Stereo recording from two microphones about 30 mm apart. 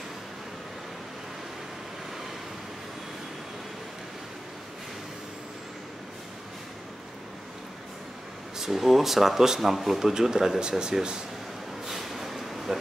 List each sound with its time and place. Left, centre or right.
8.7 s speech: centre
9.9 s speech: centre
11.8 s a sound: centre